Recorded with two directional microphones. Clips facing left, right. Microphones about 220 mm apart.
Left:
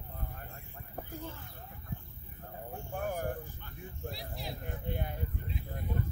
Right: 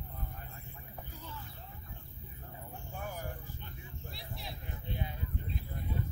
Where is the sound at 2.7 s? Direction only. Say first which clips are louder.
Left 7 dB; 50° left (ahead or behind).